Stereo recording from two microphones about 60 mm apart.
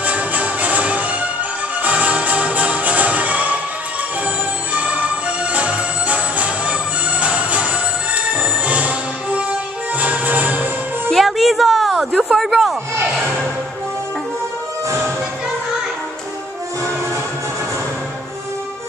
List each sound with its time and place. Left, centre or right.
0.0 s music: right
4.7 s music: right
11.1 s a sound: centre